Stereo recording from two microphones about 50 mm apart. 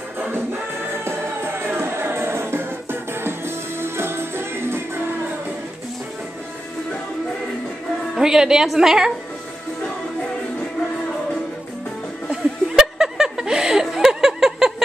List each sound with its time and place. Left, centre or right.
0.3 s music: right
8.2 s a woman's voice: centre
10.6 s music: centre
12.3 s chuckle: centre